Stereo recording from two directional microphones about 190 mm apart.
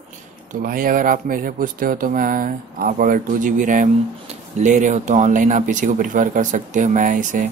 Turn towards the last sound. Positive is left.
turn(degrees=-45)  # may be behind; listen again after turning